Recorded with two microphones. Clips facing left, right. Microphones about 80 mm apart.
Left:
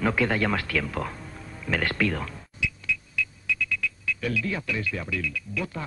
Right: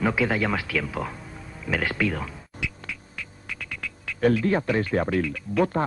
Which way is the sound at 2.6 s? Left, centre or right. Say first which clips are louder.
Left 4 dB; right.